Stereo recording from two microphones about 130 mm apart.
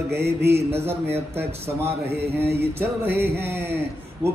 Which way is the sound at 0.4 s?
20° right (ahead or behind).